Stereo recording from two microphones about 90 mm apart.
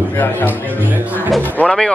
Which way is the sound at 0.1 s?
20° left (ahead or behind).